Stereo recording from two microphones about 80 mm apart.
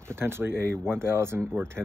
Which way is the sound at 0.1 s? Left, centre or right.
Right.